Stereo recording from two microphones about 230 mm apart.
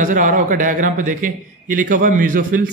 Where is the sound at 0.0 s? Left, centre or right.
Right.